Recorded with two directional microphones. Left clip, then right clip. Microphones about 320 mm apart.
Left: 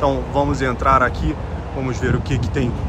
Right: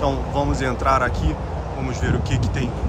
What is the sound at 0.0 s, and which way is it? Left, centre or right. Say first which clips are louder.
Speech: left 4 dB; centre.